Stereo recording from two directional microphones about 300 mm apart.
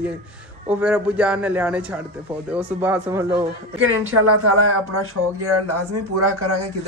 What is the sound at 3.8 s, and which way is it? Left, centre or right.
Speech, right.